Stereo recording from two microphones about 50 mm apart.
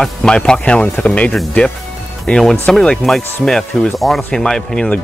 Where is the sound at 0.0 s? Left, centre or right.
Centre; by 1.3 s left.